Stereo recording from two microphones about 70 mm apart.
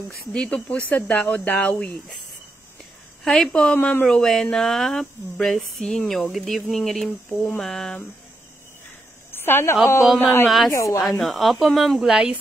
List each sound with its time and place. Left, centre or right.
0.3 s speech: centre
3.3 s a woman's voice: centre
4.0 s a woman's voice: centre
9.3 s a sound: left
10.0 s speech: centre
10.7 s a woman's voice: left
11.1 s speech: centre